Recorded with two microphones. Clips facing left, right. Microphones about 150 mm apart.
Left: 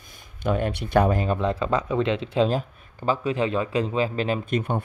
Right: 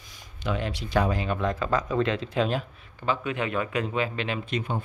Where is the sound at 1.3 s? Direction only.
30° left (ahead or behind).